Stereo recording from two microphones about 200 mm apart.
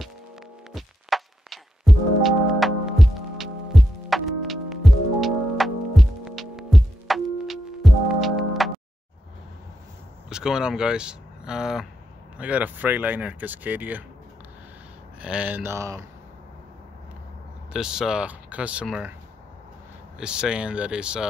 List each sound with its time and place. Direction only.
0.7 s music: centre (ahead or behind)
10.3 s speech: 5° right (ahead or behind)
15.2 s speech: 5° right (ahead or behind)
17.7 s speech: 5° right (ahead or behind)
20.2 s speech: 5° right (ahead or behind)